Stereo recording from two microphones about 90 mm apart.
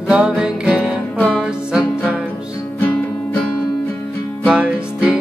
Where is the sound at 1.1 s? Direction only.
10° left (ahead or behind).